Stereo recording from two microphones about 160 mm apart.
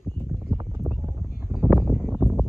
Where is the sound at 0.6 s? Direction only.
20° right (ahead or behind); by 2.4 s 5° right (ahead or behind).